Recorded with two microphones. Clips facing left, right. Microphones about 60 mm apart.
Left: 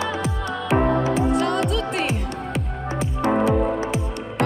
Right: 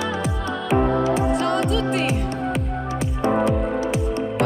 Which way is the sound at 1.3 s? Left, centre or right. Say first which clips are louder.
Even; centre.